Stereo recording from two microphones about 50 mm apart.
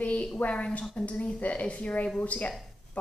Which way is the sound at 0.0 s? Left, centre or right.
Left.